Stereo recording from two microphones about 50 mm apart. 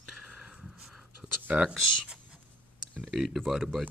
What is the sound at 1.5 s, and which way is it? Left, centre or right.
Speech, right.